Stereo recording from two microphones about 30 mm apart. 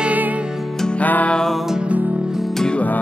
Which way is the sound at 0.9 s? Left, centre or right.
Left.